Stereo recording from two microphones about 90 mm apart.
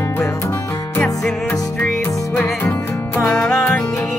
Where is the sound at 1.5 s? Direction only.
25° left (ahead or behind).